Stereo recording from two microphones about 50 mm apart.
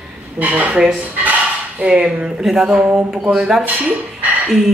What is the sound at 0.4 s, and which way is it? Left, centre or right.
Speech, right.